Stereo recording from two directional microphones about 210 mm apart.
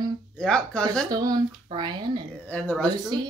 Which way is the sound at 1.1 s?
15° right (ahead or behind).